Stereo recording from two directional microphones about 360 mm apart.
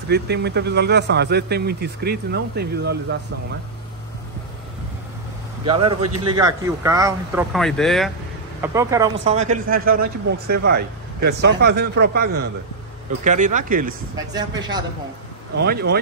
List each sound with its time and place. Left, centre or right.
0.1 s a man's voice: right
5.7 s a man's voice: centre
14.1 s speech: centre
15.6 s a man's voice: right